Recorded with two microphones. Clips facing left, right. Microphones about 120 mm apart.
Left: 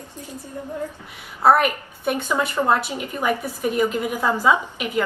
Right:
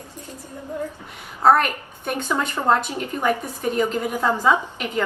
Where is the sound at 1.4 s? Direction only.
10° left (ahead or behind).